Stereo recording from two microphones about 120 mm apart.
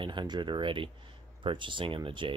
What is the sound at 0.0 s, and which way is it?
Speech, 40° right (ahead or behind).